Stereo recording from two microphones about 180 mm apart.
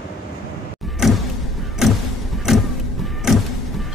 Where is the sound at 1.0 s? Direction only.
Centre (ahead or behind).